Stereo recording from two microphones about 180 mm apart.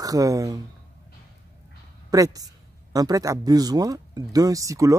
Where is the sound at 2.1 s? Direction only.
20° right (ahead or behind).